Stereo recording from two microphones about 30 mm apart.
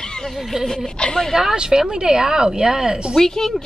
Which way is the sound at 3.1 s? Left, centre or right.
Centre.